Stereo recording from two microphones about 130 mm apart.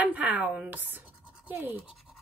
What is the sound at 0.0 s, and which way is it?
Speech, 10° right (ahead or behind).